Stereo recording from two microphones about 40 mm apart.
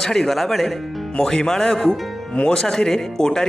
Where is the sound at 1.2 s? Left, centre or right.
Centre.